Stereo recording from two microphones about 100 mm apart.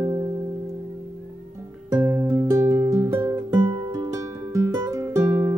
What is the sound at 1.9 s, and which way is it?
Music, 30° right (ahead or behind).